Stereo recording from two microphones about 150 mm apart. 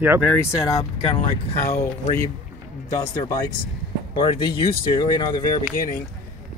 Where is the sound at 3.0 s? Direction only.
25° left (ahead or behind).